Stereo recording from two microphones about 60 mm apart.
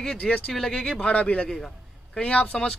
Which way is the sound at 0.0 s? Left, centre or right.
Centre.